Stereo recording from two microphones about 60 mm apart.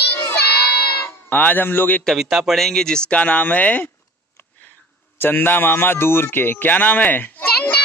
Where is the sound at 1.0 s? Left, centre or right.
Left.